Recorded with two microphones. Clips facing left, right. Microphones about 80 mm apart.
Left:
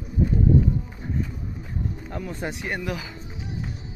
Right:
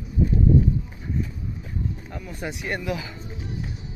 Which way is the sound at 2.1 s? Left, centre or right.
Left.